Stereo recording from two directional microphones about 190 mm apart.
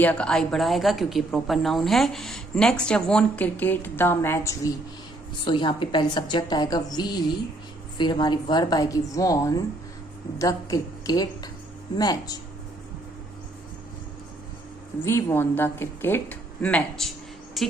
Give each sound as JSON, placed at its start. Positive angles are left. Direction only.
{"t": 0.0, "sound": "a woman's voice", "side_deg": 5}
{"t": 15.0, "sound": "a woman's voice", "side_deg": 15}
{"t": 17.6, "sound": "a sound", "side_deg": 0}